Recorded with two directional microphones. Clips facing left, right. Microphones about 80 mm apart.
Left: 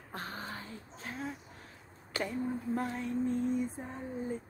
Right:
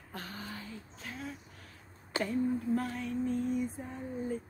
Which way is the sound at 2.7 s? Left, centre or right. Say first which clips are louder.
Right 1 dB; left.